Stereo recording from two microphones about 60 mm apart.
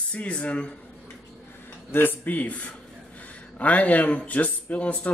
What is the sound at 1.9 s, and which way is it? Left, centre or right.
Speech, left.